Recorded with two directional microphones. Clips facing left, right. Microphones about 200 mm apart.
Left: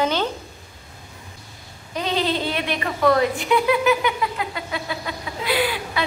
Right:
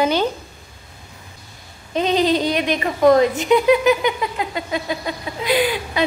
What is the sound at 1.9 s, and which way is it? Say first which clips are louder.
Speech: right 6 dB; 20° right (ahead or behind).